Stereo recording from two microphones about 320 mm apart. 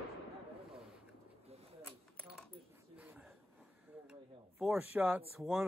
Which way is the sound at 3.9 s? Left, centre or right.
Centre.